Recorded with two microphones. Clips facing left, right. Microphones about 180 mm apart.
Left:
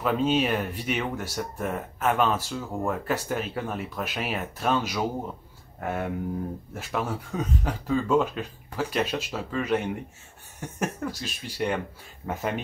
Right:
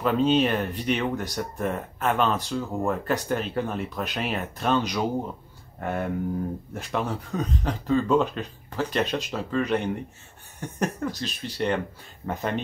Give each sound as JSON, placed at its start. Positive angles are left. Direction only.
{"t": 0.0, "sound": "speech", "side_deg": 5}